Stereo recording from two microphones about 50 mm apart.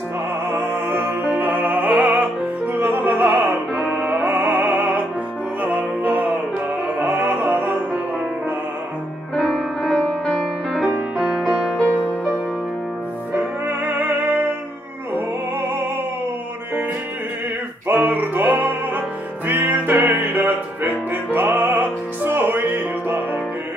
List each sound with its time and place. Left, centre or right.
0.5 s music: right
1.3 s music: right
2.6 s opera: right
3.8 s music: right
4.2 s music: right
7.1 s music: right
9.3 s music: centre
11.5 s music: centre
13.3 s music: right
17.8 s music: right